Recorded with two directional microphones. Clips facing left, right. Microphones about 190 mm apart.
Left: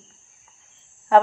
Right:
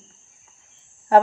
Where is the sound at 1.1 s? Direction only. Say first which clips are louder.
Right 1 dB; 40° right (ahead or behind).